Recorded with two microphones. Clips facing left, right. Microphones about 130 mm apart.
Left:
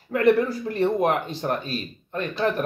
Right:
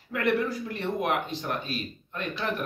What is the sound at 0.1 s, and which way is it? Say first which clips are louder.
Speech: left 7 dB; 35° left (ahead or behind).